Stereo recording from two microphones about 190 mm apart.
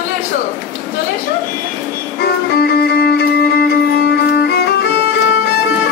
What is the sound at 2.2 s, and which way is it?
Music, 55° left (ahead or behind).